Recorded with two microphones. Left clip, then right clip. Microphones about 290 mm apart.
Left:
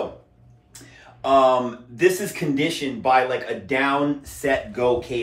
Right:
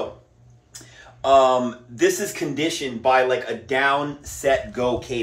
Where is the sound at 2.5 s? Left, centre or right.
Right.